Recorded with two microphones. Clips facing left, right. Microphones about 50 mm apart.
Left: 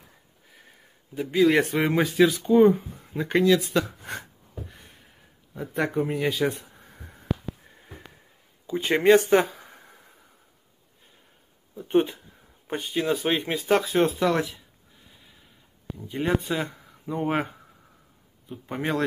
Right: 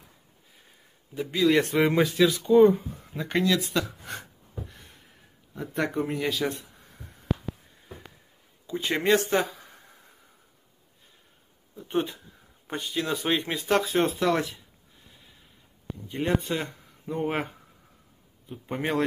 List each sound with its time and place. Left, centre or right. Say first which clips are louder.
1.4 s speech: left 2 dB; centre
1.7 s speech: right 1 dB; centre
3.8 s speech: left 2 dB; left
5.5 s speech: left 2 dB; centre
6.2 s speech: left 3 dB; centre
6.9 s a sound: left 2 dB; left
8.6 s speech: left 5 dB; centre
9.6 s a sound: left 3 dB; left
11.7 s speech: left 6 dB; left
13.0 s speech: left 2 dB; centre
15.1 s gasp: left 1 dB; centre
16.1 s speech: left 1 dB; centre